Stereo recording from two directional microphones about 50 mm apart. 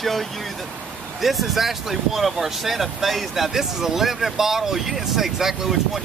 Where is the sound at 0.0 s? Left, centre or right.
Centre.